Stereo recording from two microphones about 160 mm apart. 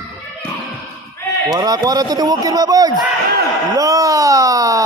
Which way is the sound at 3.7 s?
20° right (ahead or behind).